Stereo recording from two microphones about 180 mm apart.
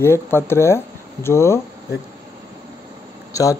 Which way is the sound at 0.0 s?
15° left (ahead or behind).